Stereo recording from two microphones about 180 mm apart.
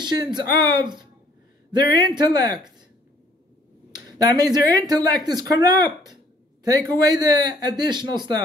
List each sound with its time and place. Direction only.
0.0 s speech: 25° right (ahead or behind)
3.9 s speech: 20° right (ahead or behind)